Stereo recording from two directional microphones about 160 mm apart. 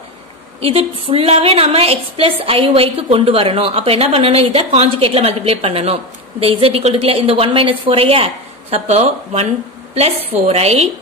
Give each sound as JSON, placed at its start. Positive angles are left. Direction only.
{"t": 0.6, "sound": "a woman's voice", "side_deg": -35}